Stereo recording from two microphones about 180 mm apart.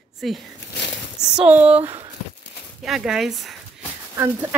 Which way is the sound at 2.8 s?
Centre (ahead or behind).